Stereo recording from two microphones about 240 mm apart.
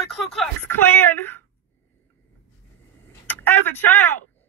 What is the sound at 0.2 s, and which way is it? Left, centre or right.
Speech, centre.